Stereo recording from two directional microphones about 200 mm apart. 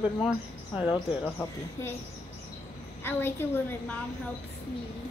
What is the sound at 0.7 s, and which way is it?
Speech, 20° left (ahead or behind).